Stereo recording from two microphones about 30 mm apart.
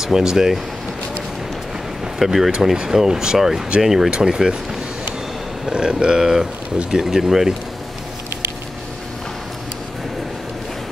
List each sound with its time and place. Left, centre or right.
0.0 s speech: centre
2.1 s speech: centre
2.6 s speech: centre
4.1 s speech: right
5.7 s speech: right